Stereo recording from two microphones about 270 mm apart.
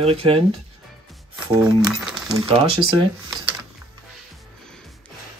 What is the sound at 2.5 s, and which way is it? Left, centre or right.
Speech, centre.